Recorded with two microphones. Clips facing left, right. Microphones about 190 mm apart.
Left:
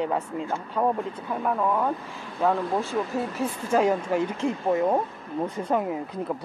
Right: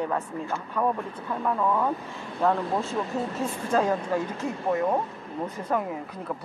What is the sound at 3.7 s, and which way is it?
Speech, 15° left (ahead or behind).